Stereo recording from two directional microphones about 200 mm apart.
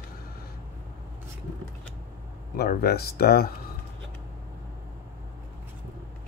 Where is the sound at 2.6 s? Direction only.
50° left (ahead or behind).